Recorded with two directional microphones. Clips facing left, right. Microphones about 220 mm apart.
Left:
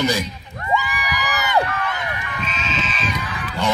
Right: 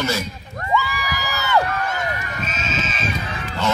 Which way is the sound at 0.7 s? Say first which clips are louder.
Right 1 dB; 15° left (ahead or behind).